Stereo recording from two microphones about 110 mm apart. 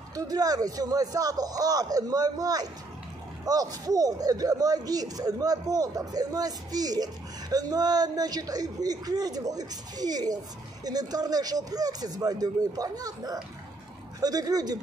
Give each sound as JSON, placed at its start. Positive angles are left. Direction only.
{"t": 0.1, "sound": "speech", "side_deg": -35}